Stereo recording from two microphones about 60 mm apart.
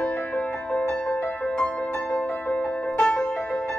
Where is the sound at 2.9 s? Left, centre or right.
Centre.